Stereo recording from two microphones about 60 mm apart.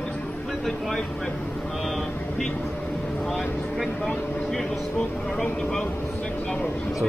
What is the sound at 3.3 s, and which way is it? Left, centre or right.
Speech, centre.